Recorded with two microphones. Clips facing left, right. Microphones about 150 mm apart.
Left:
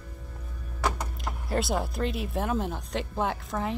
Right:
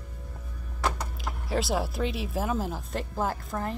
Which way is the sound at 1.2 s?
Centre (ahead or behind).